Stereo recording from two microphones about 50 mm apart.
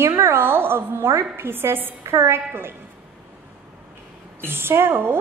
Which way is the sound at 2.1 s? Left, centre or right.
Right.